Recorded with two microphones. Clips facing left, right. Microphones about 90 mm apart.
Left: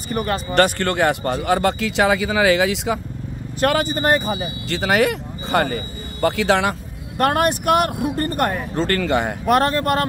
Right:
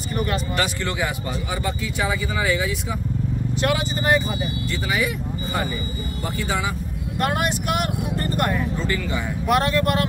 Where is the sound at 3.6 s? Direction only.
50° left (ahead or behind).